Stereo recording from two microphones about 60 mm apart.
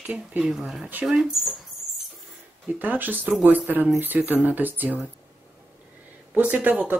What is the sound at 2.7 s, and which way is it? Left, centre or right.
Speech, right.